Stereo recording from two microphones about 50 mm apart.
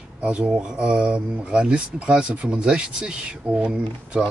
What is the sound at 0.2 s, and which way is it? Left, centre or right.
Speech, right.